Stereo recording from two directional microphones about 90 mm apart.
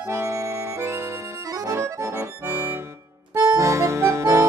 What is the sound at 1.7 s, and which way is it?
Accordion, 30° right (ahead or behind).